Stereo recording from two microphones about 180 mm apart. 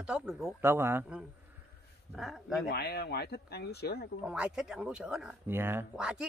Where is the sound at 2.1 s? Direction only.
Centre (ahead or behind).